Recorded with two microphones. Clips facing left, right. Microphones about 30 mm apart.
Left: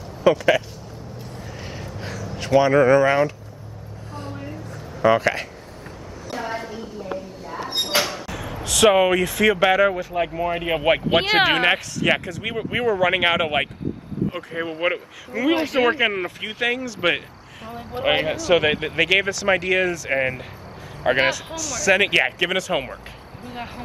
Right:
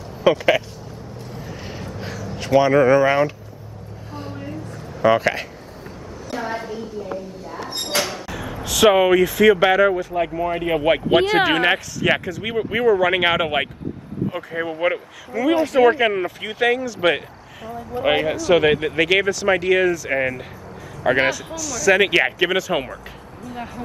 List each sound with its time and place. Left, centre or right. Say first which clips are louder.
0.2 s speech: right 1 dB; centre
1.6 s a sound: even; centre
4.1 s vehicle: right 2 dB; centre
5.0 s speech: right 1 dB; centre
7.7 s speech: left 1 dB; centre
11.4 s speech: even; centre
16.0 s speech: right 2 dB; centre
17.9 s speech: right 2 dB; left
18.3 s speech: right 2 dB; centre
23.4 s vehicle: right 2 dB; left